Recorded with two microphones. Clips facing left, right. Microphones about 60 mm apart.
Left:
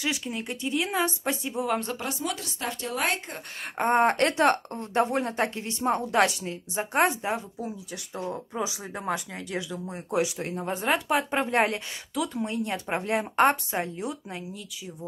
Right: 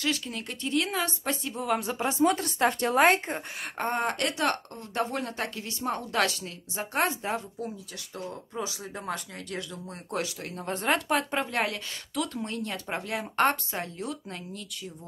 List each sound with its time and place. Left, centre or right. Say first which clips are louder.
0.0 s speech: even; centre
2.0 s a woman's voice: right 7 dB; right
3.9 s speech: left 8 dB; left
7.2 s speech: left 2 dB; centre
8.2 s speech: left 4 dB; left
8.6 s speech: left 4 dB; centre
10.7 s speech: even; centre
11.5 s speech: left 8 dB; left
12.2 s speech: left 3 dB; centre